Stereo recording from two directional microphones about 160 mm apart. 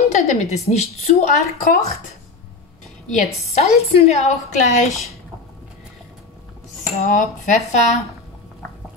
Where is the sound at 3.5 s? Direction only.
40° left (ahead or behind).